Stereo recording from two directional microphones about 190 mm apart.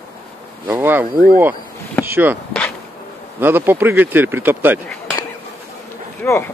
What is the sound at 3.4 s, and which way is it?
Speech, 10° right (ahead or behind).